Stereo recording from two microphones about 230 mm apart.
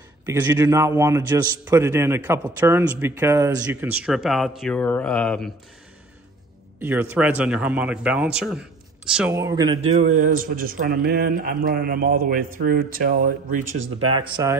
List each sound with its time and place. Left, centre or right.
0.2 s a man's voice: centre
6.8 s a man's voice: centre; by 10.1 s right
10.2 s a man's voice: right
13.6 s speech: right
14.2 s a man's voice: centre